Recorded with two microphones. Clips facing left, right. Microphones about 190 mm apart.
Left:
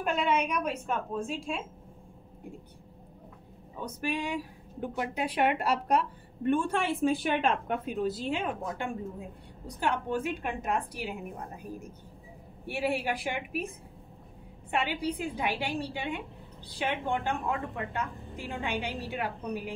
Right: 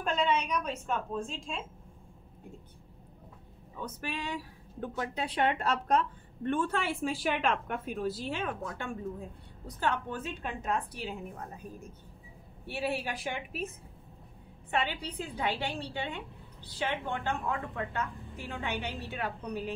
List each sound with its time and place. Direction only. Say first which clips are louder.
0.0 s speech: left 2 dB; 10° left (ahead or behind)
3.8 s speech: left 5 dB; 15° left (ahead or behind)
12.6 s speech: left 3 dB; 10° left (ahead or behind)
14.7 s speech: left 3 dB; 10° left (ahead or behind)